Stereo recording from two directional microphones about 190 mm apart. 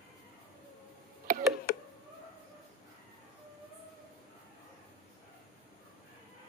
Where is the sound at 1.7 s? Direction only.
50° left (ahead or behind).